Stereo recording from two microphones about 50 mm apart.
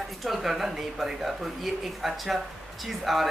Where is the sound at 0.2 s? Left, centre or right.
Centre.